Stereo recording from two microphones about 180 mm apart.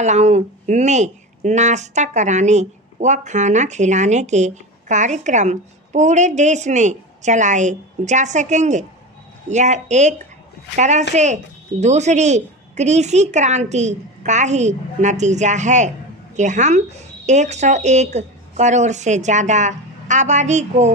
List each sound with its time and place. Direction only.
0.0 s speech: 40° right (ahead or behind)